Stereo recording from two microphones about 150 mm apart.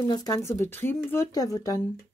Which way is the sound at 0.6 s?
15° left (ahead or behind).